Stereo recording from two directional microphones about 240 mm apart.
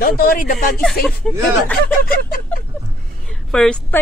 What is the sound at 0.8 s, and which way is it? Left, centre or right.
Speech, centre.